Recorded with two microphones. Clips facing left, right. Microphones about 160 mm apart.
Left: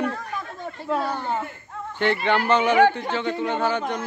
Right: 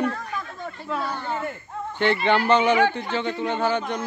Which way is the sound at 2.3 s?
5° left (ahead or behind).